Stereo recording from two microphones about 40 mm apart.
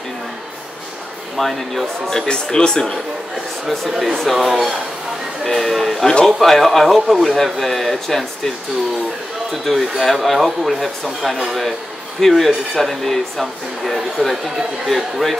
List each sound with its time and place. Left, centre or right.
1.3 s speech: centre
2.2 s speech: left
4.0 s speech: centre
9.7 s speech: centre